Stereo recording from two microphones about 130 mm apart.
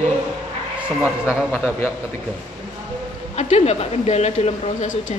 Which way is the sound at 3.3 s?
55° left (ahead or behind).